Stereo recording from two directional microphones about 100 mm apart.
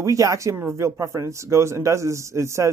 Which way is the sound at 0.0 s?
35° right (ahead or behind).